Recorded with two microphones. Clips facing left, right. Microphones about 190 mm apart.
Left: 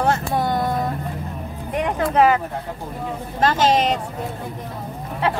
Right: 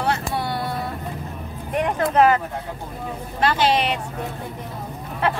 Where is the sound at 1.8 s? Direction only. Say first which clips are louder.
Even; 10° left (ahead or behind).